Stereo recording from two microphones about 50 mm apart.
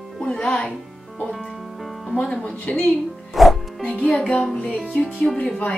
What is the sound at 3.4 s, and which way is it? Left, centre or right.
Music, centre.